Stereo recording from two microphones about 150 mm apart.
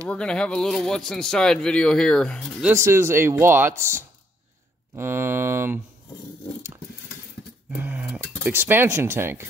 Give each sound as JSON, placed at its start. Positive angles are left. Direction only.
{"t": 0.1, "sound": "a man's voice", "side_deg": 5}
{"t": 2.7, "sound": "speech", "side_deg": -20}
{"t": 7.7, "sound": "speech", "side_deg": -10}